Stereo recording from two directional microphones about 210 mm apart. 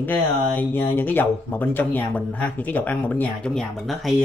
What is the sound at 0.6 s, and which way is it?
Speech, 10° left (ahead or behind).